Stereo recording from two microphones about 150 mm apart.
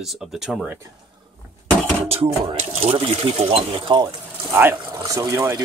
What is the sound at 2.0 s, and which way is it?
Speech, 40° right (ahead or behind).